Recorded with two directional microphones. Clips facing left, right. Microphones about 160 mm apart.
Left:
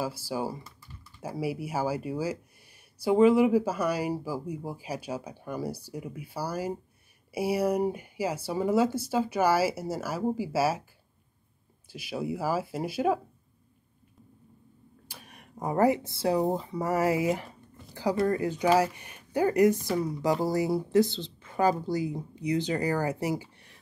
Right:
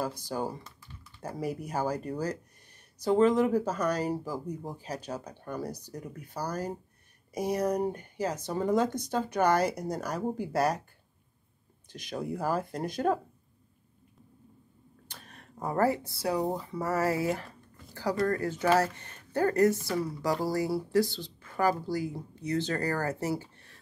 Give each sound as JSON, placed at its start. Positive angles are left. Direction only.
{"t": 0.0, "sound": "speech", "side_deg": 5}
{"t": 11.9, "sound": "speech", "side_deg": 5}
{"t": 15.0, "sound": "speech", "side_deg": 10}